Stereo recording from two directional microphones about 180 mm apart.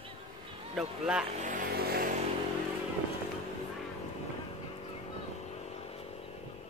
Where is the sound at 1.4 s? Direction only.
55° right (ahead or behind).